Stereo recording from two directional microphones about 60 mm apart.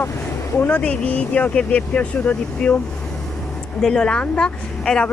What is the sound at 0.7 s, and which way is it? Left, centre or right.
Speech, left.